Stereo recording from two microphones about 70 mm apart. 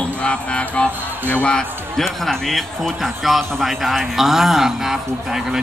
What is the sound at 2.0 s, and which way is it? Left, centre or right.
A man's voice, centre.